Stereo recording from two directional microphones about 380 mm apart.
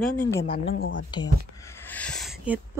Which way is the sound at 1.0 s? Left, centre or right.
Centre.